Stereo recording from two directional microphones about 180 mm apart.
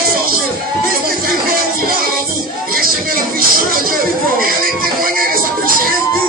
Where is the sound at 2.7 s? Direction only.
55° right (ahead or behind).